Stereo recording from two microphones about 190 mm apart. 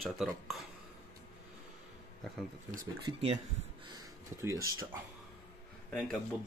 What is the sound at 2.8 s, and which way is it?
Speech, 30° right (ahead or behind).